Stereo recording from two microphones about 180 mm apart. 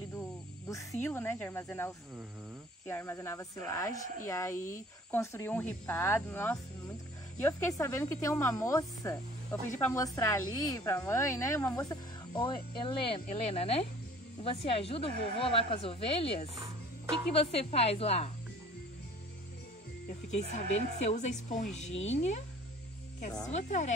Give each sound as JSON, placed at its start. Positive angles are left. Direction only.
{"t": 1.0, "sound": "speech", "side_deg": 10}
{"t": 20.1, "sound": "speech", "side_deg": 40}
{"t": 23.5, "sound": "speech", "side_deg": 40}